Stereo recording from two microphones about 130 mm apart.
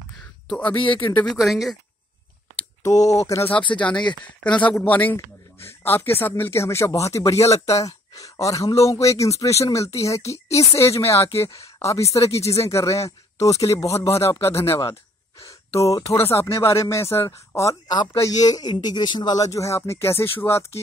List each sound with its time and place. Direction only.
1.3 s speech: centre (ahead or behind)
2.8 s speech: 25° left (ahead or behind)
3.5 s a man's voice: 10° left (ahead or behind)
15.8 s speech: 25° left (ahead or behind)